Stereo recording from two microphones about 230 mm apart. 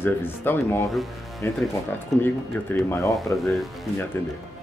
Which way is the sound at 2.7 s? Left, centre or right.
Centre.